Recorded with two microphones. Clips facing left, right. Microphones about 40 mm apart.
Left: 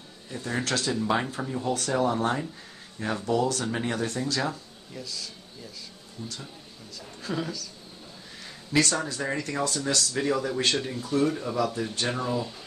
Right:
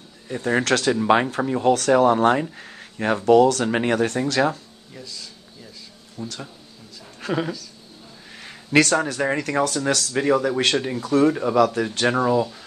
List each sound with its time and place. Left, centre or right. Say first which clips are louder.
0.3 s speech: right 9 dB; right
0.9 s speech: right 8 dB; right
2.5 s a sound: right 6 dB; right
3.3 s speech: right 12 dB; right
4.9 s speech: even; centre
6.1 s speech: right 6 dB; right
7.2 s a sound: right 7 dB; right
8.7 s speech: right 7 dB; right
11.0 s speech: right 9 dB; right
11.2 s speech: right 8 dB; right
11.5 s speech: right 9 dB; right